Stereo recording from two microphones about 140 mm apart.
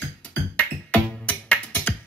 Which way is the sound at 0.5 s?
10° left (ahead or behind).